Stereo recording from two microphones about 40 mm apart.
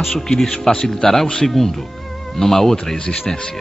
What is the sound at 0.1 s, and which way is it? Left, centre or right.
A man's voice, centre.